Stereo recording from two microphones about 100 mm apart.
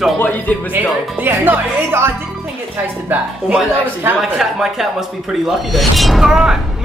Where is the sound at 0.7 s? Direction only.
20° right (ahead or behind).